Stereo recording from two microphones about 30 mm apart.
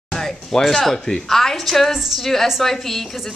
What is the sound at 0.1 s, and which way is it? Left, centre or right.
A woman's voice, centre.